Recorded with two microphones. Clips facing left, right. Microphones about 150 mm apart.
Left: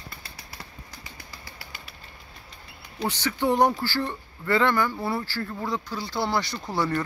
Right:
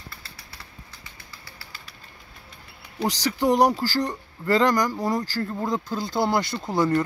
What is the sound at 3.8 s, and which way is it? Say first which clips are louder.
Speech: right 3 dB; 40° right (ahead or behind).